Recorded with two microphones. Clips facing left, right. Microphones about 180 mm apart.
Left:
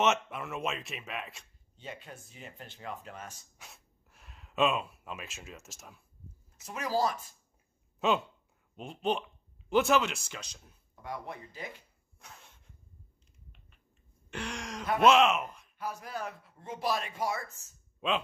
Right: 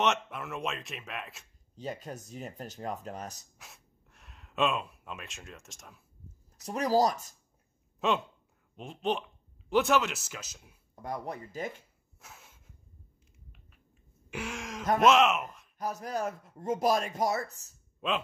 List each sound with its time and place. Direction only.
0.0 s speech: centre (ahead or behind)
1.8 s a man's voice: 40° right (ahead or behind)
3.5 s speech: centre (ahead or behind)
6.6 s a man's voice: 40° right (ahead or behind)
8.0 s speech: centre (ahead or behind)
11.0 s a man's voice: 40° right (ahead or behind)
12.2 s a sound: 5° right (ahead or behind)
14.3 s speech: 5° right (ahead or behind)
15.8 s a man's voice: 40° right (ahead or behind)
18.0 s speech: centre (ahead or behind)